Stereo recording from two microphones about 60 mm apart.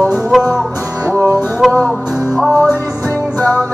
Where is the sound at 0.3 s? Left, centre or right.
Centre.